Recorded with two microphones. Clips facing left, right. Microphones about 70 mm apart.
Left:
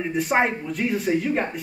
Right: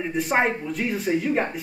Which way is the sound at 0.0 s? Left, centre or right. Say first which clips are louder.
Left 1 dB; centre.